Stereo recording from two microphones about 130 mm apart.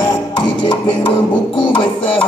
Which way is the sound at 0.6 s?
40° left (ahead or behind).